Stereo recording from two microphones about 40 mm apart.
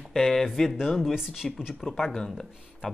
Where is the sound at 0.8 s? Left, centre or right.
Centre.